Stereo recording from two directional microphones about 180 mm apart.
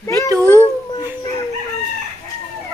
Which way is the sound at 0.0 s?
15° left (ahead or behind).